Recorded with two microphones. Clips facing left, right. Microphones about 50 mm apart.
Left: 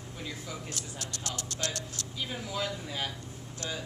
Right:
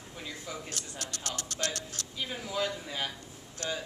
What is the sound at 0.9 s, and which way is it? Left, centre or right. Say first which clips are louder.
Speech: right 2 dB; right.